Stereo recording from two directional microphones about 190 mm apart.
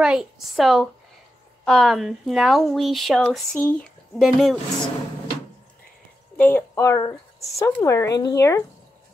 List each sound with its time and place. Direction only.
0.0 s speech: 5° right (ahead or behind)
6.3 s speech: 10° left (ahead or behind)